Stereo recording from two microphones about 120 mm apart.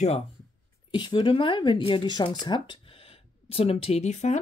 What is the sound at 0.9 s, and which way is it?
Speech, 40° left (ahead or behind).